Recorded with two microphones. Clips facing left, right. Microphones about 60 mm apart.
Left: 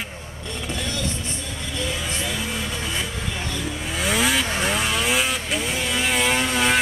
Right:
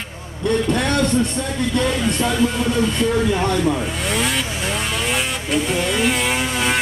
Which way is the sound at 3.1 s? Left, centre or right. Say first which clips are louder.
Right 12 dB; right.